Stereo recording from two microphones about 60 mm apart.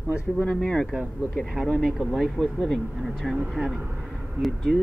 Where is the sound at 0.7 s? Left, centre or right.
Centre.